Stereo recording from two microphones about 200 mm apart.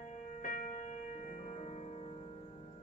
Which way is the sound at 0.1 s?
40° left (ahead or behind).